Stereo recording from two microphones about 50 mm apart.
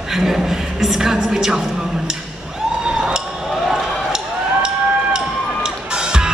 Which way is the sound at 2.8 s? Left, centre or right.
Centre.